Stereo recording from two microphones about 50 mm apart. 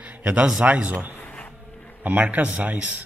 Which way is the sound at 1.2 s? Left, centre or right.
Left.